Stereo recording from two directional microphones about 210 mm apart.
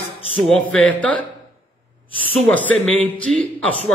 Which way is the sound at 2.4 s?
5° left (ahead or behind).